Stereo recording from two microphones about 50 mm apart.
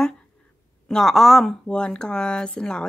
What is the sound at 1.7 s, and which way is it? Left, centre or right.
Speech, centre.